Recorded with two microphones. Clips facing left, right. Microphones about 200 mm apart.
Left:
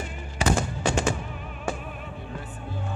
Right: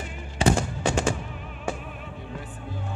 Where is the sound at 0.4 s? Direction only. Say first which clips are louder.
Right 3 dB; 30° right (ahead or behind).